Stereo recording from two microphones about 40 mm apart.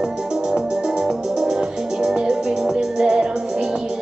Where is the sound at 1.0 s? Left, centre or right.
Centre.